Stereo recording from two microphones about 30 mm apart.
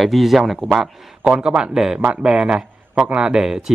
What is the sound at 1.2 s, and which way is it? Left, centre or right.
Speech, right.